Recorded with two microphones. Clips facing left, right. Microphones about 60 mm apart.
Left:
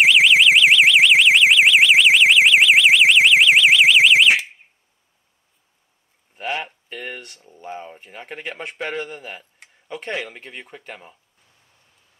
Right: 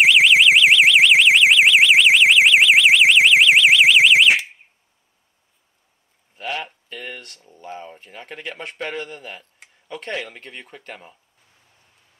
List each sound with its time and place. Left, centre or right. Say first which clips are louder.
0.0 s alarm: even; centre
6.3 s a sound: left 2 dB; left
6.6 s speech: left 1 dB; centre